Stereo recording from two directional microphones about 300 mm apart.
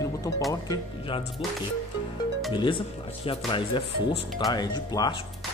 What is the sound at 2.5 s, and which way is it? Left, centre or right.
Speech, centre.